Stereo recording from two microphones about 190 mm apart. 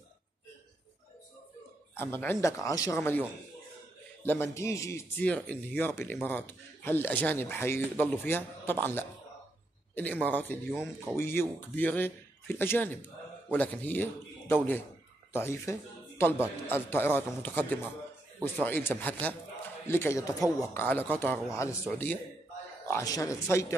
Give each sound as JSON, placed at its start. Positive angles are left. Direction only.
{"t": 2.0, "sound": "speech", "side_deg": 10}
{"t": 10.2, "sound": "speech", "side_deg": 10}
{"t": 15.3, "sound": "speech", "side_deg": 15}